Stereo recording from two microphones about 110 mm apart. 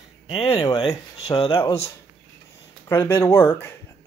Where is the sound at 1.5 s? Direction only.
25° left (ahead or behind).